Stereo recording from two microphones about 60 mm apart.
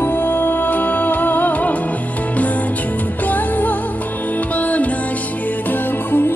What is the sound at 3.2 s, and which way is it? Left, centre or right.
Music, left.